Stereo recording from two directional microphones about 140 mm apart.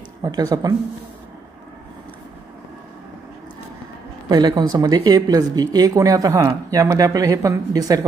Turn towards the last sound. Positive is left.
turn(degrees=-25)  # may be behind; listen again after turning